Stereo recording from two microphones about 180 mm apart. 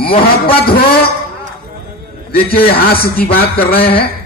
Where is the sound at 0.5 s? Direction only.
60° left (ahead or behind).